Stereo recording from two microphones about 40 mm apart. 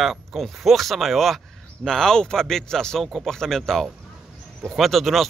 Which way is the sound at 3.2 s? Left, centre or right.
Centre.